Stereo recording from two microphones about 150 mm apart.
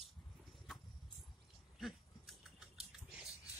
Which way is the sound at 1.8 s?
Centre (ahead or behind).